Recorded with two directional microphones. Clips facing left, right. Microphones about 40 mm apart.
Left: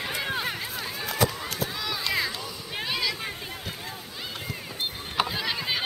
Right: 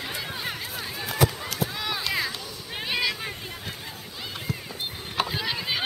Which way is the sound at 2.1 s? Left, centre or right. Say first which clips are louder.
Left 2 dB; centre.